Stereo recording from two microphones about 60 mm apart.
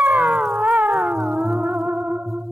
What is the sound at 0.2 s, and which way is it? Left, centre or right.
Howl, centre.